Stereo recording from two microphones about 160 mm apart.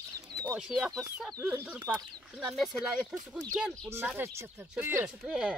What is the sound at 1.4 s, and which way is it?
Speech, 20° right (ahead or behind).